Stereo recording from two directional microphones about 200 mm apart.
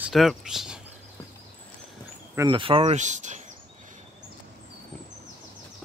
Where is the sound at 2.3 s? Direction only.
25° right (ahead or behind).